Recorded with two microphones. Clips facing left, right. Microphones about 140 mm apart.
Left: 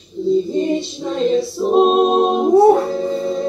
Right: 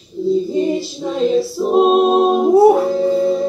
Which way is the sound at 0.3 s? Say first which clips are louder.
Even; 5° right (ahead or behind).